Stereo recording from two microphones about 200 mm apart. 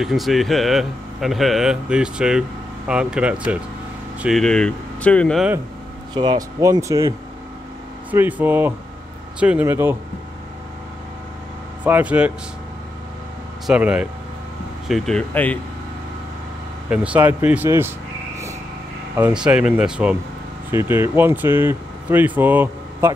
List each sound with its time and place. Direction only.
0.0 s speech: centre (ahead or behind)
6.1 s speech: 20° right (ahead or behind)
11.8 s speech: 5° right (ahead or behind)
13.7 s speech: 5° right (ahead or behind)
16.9 s speech: 5° right (ahead or behind)
19.1 s speech: 10° right (ahead or behind)